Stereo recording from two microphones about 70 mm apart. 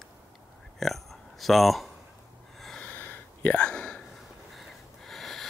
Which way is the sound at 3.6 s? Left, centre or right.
Centre.